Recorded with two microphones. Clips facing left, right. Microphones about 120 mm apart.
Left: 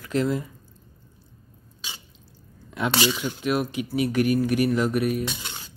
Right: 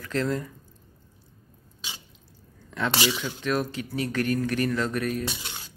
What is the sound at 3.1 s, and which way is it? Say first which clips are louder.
Speech: left 2 dB; 15° left (ahead or behind).